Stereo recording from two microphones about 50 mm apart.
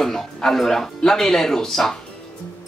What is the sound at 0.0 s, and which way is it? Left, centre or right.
Speech, centre.